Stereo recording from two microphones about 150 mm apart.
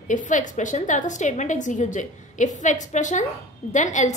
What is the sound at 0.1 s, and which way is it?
A woman's voice, 55° left (ahead or behind).